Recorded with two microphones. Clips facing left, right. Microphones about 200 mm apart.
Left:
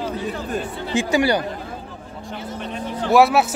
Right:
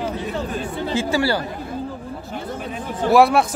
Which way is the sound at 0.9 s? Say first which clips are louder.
Left 3 dB; 15° left (ahead or behind).